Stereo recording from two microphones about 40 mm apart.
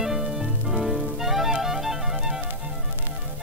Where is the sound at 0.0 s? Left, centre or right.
Centre.